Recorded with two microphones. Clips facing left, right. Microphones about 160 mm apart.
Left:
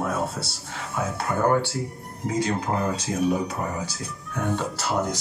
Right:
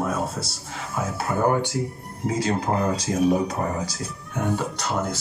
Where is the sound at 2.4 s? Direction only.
35° right (ahead or behind).